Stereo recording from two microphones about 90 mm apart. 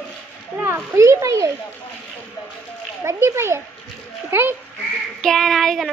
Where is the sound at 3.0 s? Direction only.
30° right (ahead or behind).